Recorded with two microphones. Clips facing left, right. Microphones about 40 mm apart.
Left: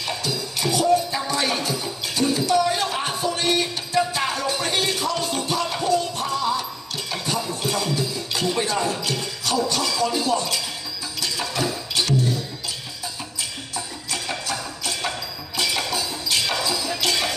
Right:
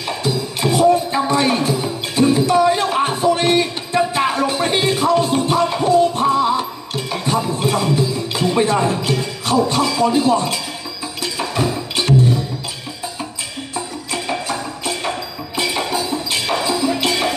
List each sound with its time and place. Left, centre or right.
0.0 s music: right
13.7 s music: right